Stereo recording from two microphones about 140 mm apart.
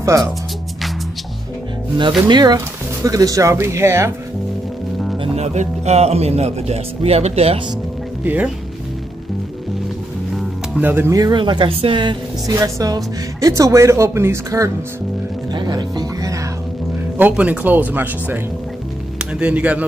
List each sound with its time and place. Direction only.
0.1 s speech: 20° right (ahead or behind)
2.2 s speech: 30° right (ahead or behind)
5.2 s speech: 50° right (ahead or behind)
8.2 s speech: 10° right (ahead or behind)
10.8 s speech: 15° right (ahead or behind)
15.5 s music: 30° right (ahead or behind)
17.2 s speech: 10° right (ahead or behind)